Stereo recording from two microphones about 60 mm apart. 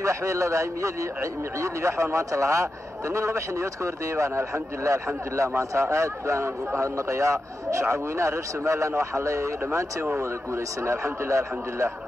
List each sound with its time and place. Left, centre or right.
0.0 s a man's voice: right